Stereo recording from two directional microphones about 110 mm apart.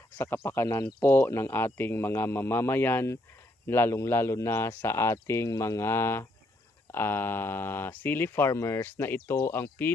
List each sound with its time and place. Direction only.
0.4 s speech: 20° left (ahead or behind)